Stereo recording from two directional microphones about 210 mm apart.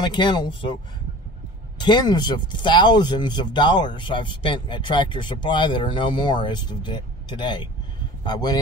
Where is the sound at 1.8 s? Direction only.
20° left (ahead or behind).